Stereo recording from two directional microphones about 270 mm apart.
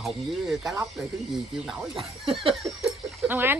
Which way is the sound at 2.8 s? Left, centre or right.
Centre.